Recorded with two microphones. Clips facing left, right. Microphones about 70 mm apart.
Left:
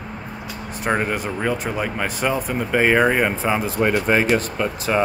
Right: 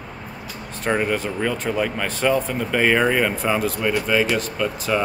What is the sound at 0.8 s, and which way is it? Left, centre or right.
Speech, centre.